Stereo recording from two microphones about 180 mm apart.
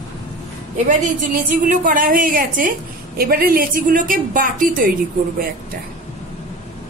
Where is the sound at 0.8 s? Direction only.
45° right (ahead or behind).